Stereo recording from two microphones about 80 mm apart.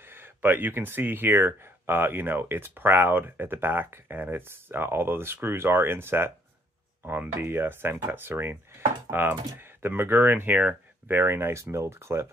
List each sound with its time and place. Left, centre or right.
0.0 s speech: right
11.1 s speech: right